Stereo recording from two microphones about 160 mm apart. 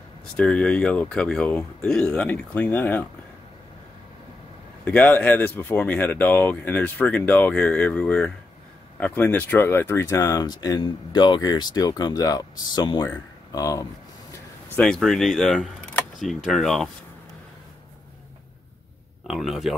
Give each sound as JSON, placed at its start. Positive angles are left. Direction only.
{"t": 0.4, "sound": "speech", "side_deg": 5}
{"t": 4.8, "sound": "speech", "side_deg": 10}
{"t": 14.8, "sound": "speech", "side_deg": 5}
{"t": 19.2, "sound": "speech", "side_deg": 0}